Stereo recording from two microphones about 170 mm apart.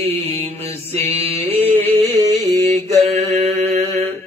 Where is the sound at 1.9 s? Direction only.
40° right (ahead or behind).